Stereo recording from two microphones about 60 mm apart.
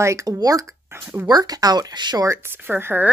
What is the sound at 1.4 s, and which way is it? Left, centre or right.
Speech, right.